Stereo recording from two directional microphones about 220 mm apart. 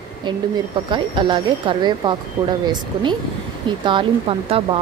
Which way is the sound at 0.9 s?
20° right (ahead or behind).